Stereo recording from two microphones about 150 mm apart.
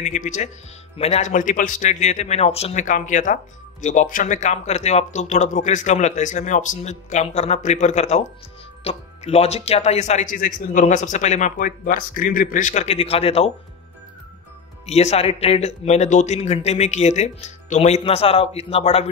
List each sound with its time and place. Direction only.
0.0 s speech: 55° left (ahead or behind)
14.9 s speech: 45° left (ahead or behind)